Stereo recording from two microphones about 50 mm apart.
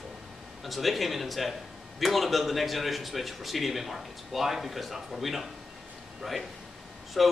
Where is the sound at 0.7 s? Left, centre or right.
Centre.